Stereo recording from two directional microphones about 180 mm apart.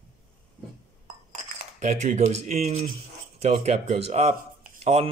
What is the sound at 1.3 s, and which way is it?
Speech, 40° right (ahead or behind).